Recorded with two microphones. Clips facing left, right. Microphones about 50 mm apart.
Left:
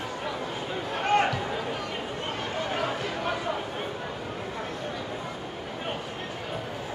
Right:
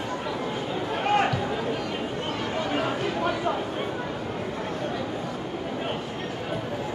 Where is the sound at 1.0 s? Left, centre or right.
Centre.